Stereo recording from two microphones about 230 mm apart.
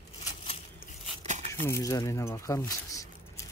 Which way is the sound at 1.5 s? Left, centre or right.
Centre.